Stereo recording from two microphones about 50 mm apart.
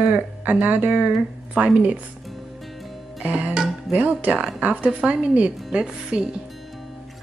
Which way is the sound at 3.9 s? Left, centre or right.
Right.